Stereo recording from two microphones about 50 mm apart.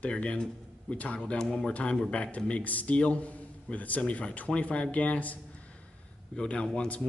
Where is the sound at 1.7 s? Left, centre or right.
Left.